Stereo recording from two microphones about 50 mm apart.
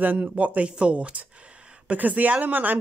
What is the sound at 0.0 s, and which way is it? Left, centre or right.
Speech, right.